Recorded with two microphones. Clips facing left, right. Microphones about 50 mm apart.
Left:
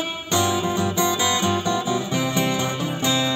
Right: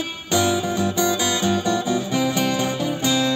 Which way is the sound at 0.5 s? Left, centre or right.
Left.